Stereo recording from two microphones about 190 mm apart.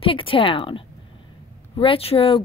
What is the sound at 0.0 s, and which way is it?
A woman's voice, 30° left (ahead or behind).